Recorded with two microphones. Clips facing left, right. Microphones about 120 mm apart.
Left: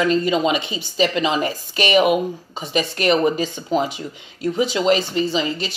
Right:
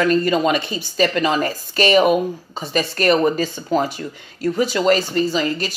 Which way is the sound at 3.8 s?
20° left (ahead or behind).